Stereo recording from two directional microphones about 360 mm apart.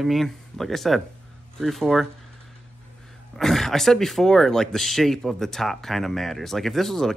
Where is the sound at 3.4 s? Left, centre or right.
Centre.